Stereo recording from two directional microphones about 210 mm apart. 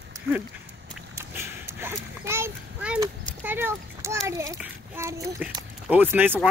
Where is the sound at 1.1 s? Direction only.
10° right (ahead or behind).